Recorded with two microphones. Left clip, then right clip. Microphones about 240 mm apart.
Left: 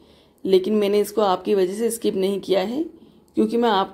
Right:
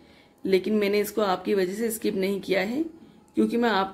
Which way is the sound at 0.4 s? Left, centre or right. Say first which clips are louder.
Left 5 dB; centre.